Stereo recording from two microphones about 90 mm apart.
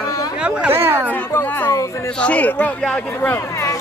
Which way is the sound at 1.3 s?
25° left (ahead or behind).